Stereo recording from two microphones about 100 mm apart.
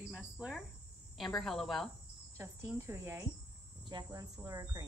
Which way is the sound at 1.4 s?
Centre (ahead or behind).